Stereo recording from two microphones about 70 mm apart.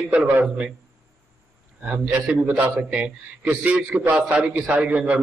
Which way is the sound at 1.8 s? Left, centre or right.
Right.